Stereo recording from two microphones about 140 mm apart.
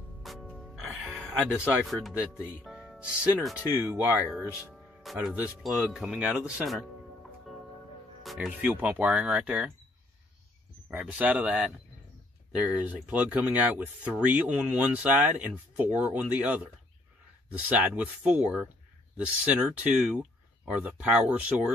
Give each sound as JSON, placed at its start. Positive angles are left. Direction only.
{"t": 0.2, "sound": "music", "side_deg": 0}
{"t": 3.8, "sound": "speech", "side_deg": -10}
{"t": 8.2, "sound": "speech", "side_deg": 0}
{"t": 10.9, "sound": "speech", "side_deg": -10}